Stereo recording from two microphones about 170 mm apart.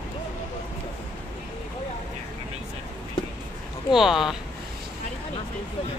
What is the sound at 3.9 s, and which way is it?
Speech, centre (ahead or behind).